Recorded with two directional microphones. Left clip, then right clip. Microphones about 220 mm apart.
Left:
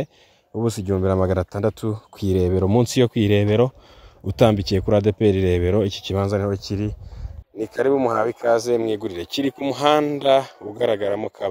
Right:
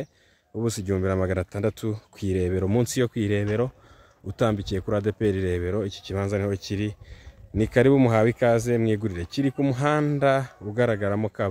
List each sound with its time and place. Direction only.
0.6 s speech: 15° left (ahead or behind); by 6.2 s 30° left (ahead or behind)
6.2 s speech: 10° left (ahead or behind); by 11.3 s 30° left (ahead or behind)